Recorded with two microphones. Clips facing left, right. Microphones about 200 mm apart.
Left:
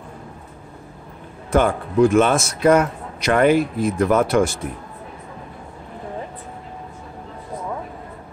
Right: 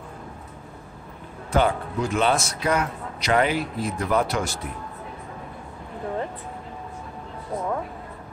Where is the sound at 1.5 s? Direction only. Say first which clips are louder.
Left 4 dB; 50° left (ahead or behind).